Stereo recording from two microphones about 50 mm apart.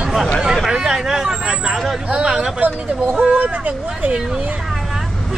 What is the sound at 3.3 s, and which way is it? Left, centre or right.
Speech, right.